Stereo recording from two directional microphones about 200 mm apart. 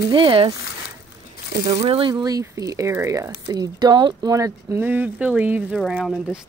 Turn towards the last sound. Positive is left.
turn(degrees=0)  # may be behind; listen again after turning